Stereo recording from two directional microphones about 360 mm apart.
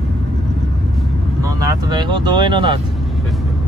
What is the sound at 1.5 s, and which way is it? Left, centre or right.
Vehicle, centre.